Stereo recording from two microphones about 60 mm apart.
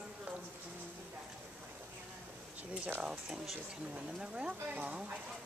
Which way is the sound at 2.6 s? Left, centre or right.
Right.